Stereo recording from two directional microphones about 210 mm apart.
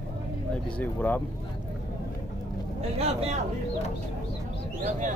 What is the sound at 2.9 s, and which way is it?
Speech, 30° right (ahead or behind).